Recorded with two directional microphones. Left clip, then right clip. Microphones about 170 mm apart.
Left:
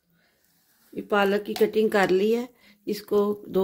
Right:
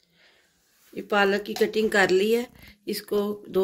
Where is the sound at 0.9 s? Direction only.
55° left (ahead or behind).